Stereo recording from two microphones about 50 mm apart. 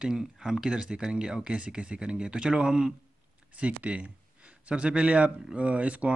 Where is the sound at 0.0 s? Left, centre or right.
Centre.